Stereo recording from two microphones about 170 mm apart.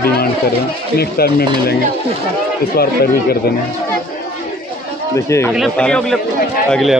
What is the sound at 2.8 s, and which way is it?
Speech, 65° left (ahead or behind).